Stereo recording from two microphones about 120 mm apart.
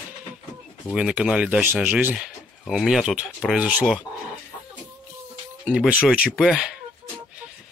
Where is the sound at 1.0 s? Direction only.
5° right (ahead or behind).